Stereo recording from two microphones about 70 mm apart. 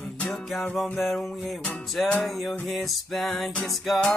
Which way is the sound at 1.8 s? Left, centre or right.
Centre.